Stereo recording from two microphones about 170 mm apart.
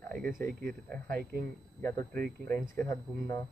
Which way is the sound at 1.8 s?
15° left (ahead or behind).